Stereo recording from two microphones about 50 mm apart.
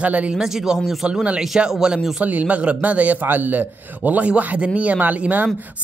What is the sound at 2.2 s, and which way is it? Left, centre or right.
A man's voice, right.